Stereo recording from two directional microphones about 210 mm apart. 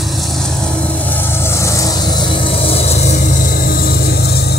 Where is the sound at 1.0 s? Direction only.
10° left (ahead or behind); by 4.6 s 50° left (ahead or behind).